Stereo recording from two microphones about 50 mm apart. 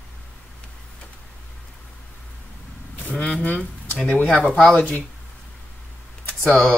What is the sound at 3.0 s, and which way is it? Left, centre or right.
Speech, left.